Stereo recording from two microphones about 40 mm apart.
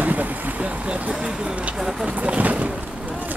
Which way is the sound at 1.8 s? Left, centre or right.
Centre.